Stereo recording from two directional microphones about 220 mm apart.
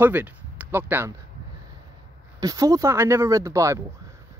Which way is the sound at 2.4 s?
15° right (ahead or behind).